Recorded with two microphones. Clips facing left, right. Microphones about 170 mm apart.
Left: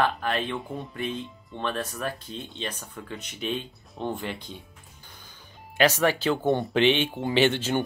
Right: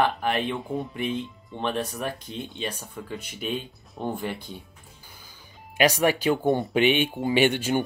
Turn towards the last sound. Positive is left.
turn(degrees=-10)  # may be behind; listen again after turning